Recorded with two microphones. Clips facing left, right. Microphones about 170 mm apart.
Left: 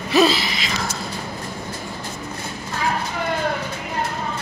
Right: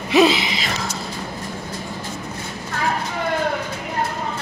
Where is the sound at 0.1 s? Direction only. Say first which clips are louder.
Right 2 dB; 20° right (ahead or behind).